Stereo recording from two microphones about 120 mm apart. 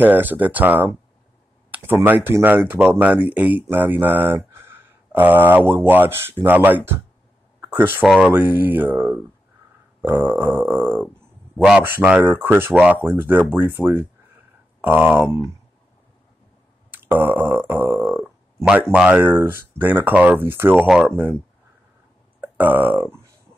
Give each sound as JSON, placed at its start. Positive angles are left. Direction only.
{"t": 0.0, "sound": "speech", "side_deg": -15}
{"t": 8.0, "sound": "speech", "side_deg": 0}
{"t": 8.3, "sound": "speech", "side_deg": -15}
{"t": 16.9, "sound": "speech", "side_deg": -15}
{"t": 20.8, "sound": "speech", "side_deg": -5}
{"t": 22.4, "sound": "speech", "side_deg": -15}